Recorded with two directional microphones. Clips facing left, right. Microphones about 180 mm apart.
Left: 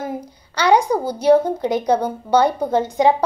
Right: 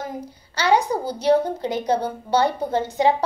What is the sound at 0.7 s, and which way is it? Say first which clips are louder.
A woman's voice: left 4 dB; 10° left (ahead or behind).